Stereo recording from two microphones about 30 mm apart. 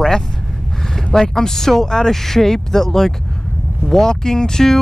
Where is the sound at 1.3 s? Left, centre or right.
Centre.